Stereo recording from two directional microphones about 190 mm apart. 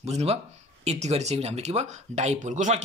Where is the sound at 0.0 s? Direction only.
35° right (ahead or behind).